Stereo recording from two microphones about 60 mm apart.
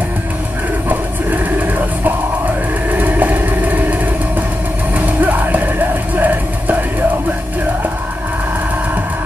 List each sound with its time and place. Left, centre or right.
2.9 s vehicle: right
4.9 s music: right